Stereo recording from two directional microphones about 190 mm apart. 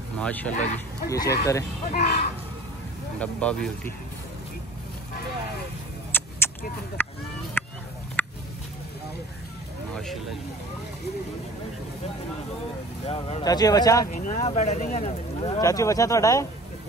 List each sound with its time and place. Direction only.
0.2 s speech: 10° left (ahead or behind)
1.1 s speech: 20° left (ahead or behind)
1.9 s speech: 55° left (ahead or behind)
3.2 s speech: 5° left (ahead or behind)
6.1 s vehicle: 10° left (ahead or behind)
7.0 s a sound: 10° left (ahead or behind)
8.2 s a sound: 10° left (ahead or behind)
9.9 s speech: centre (ahead or behind)
13.0 s speech: 30° left (ahead or behind)
13.4 s speech: 20° left (ahead or behind)
14.1 s speech: 40° left (ahead or behind)
15.6 s speech: 15° left (ahead or behind)